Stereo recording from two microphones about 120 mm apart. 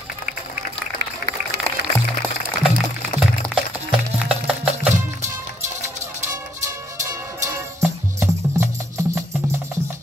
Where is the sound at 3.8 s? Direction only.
5° right (ahead or behind).